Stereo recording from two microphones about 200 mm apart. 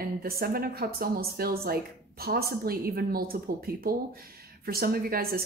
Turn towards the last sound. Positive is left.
turn(degrees=-50)  # may be behind; listen again after turning